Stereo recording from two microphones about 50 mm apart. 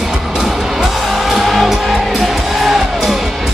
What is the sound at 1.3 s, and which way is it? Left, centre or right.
Music, centre.